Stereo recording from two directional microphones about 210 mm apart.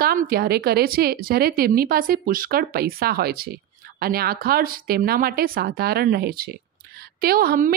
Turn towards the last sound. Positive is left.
turn(degrees=-45)  # may be behind; listen again after turning